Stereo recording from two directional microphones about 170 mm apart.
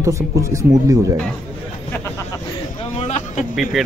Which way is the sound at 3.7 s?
Centre (ahead or behind).